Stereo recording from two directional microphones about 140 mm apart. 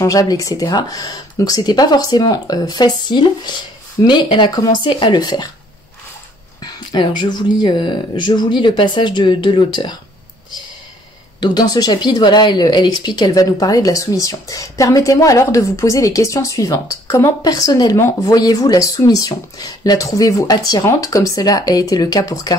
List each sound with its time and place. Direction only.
0.0 s speech: 25° left (ahead or behind)
6.6 s speech: 35° left (ahead or behind)
11.3 s speech: 30° left (ahead or behind)